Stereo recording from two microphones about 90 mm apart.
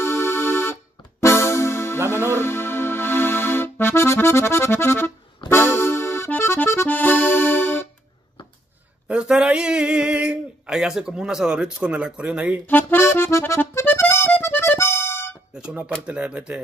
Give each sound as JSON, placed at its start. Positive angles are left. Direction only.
{"t": 0.0, "sound": "music", "side_deg": 25}
{"t": 5.5, "sound": "accordion", "side_deg": 25}
{"t": 9.0, "sound": "a sound", "side_deg": -10}
{"t": 12.6, "sound": "accordion", "side_deg": 25}
{"t": 16.1, "sound": "speech", "side_deg": -15}